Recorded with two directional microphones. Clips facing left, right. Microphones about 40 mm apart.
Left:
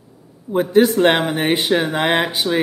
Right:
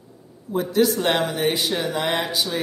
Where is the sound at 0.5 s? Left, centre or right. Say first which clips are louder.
Left 6 dB; left.